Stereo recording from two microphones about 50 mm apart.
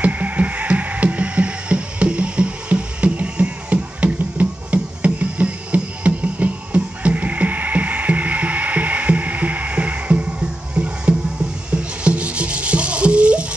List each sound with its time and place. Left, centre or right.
0.0 s music: right